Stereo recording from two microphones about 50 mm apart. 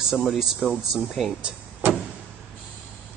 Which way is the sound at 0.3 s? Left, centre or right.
Centre.